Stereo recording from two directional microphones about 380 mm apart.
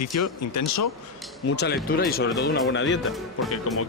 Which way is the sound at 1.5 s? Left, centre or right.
Left.